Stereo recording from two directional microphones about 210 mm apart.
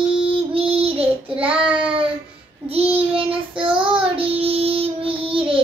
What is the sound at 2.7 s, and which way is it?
Child singing, 25° right (ahead or behind).